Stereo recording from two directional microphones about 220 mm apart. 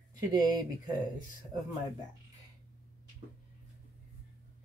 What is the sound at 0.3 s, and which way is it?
Speech, 15° right (ahead or behind).